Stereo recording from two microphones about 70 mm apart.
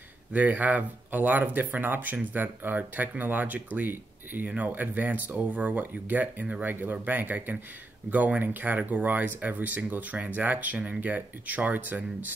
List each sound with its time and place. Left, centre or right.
0.3 s speech: right